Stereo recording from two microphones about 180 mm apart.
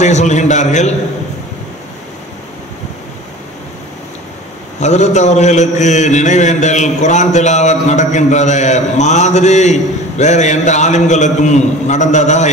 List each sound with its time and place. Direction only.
0.0 s a man's voice: 40° left (ahead or behind)
4.7 s a man's voice: 40° left (ahead or behind)